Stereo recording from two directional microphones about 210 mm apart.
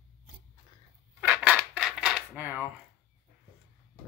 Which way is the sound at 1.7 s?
5° right (ahead or behind).